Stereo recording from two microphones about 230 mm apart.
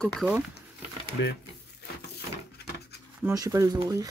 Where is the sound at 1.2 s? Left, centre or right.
Left.